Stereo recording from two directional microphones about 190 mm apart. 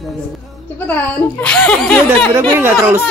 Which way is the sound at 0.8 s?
10° left (ahead or behind).